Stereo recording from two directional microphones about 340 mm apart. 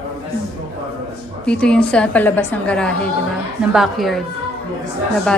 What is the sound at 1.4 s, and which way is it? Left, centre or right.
A woman's voice, centre.